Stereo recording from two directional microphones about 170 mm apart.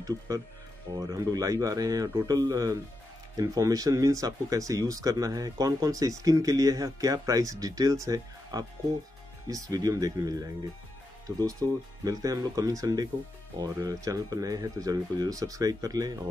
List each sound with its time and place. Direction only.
0.9 s speech: 20° right (ahead or behind)